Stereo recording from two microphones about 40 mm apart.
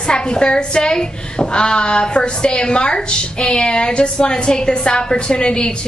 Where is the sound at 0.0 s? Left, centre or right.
Left.